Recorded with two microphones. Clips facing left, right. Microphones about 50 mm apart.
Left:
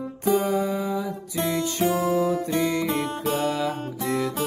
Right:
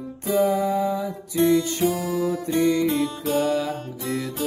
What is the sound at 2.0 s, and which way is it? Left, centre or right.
Music, left.